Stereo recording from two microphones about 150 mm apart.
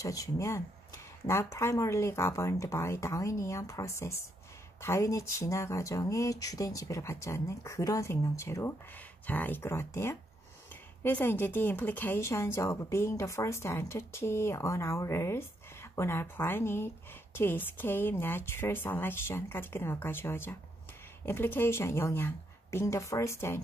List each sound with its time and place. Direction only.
0.0 s a woman's voice: 20° left (ahead or behind)